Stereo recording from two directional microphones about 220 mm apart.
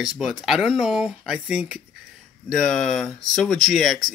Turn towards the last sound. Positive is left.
turn(degrees=0)  # may be behind; listen again after turning